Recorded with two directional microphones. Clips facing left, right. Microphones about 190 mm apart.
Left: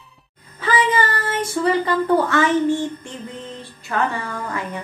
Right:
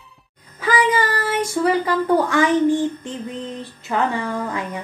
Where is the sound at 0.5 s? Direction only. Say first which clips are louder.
Right 1 dB; 10° right (ahead or behind).